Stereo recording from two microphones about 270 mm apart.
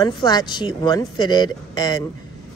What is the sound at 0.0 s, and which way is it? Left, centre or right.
Speech, centre.